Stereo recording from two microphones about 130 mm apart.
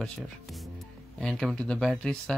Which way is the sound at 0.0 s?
Centre (ahead or behind).